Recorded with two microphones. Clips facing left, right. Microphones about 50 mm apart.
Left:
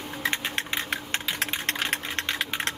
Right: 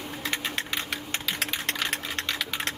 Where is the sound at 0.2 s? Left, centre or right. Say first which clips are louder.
Left 3 dB; left.